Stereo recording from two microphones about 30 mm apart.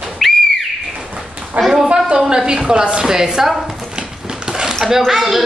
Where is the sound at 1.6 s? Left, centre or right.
Right.